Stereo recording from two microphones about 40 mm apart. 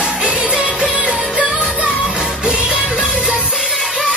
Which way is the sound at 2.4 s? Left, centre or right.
Right.